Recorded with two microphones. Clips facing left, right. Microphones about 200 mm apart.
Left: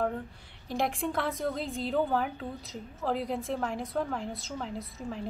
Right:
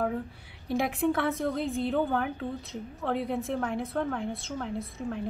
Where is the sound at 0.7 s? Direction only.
5° right (ahead or behind).